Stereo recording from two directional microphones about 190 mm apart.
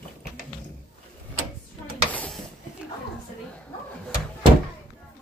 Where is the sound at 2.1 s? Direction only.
10° left (ahead or behind).